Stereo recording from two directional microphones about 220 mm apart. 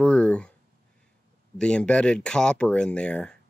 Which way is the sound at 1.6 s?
5° left (ahead or behind).